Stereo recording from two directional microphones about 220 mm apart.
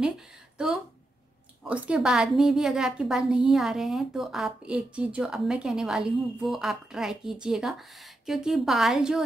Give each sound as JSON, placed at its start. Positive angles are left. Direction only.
{"t": 0.6, "sound": "a woman's voice", "side_deg": -5}